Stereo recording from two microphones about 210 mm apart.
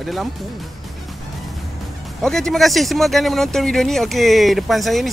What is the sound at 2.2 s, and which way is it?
Speech, centre (ahead or behind).